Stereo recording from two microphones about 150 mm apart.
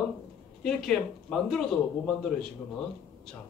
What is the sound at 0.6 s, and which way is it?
Speech, centre (ahead or behind).